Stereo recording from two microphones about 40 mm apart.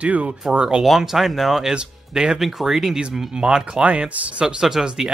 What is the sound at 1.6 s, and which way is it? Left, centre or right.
Speech, centre.